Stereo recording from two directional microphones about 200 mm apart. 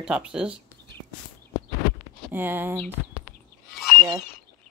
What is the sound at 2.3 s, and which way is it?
Speech, 10° right (ahead or behind).